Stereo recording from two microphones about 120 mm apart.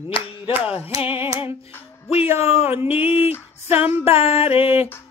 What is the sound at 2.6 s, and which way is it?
Music, 20° right (ahead or behind).